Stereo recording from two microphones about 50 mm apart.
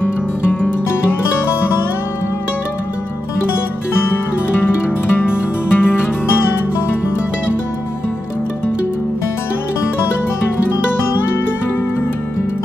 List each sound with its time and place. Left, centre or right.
4.0 s music: left